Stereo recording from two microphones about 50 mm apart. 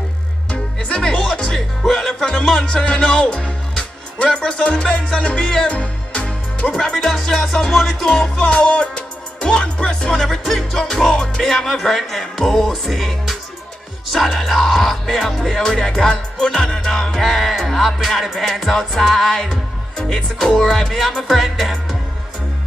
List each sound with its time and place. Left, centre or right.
0.5 s music: left
2.8 s speech: centre
5.7 s music: left
7.0 s music: centre
8.4 s music: centre
10.1 s music: centre
15.6 s music: centre
19.5 s speech: centre
20.6 s music: centre